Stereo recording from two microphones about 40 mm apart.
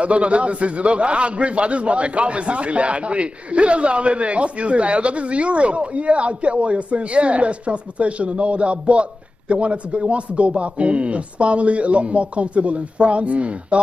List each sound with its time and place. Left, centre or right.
0.0 s a man's voice: right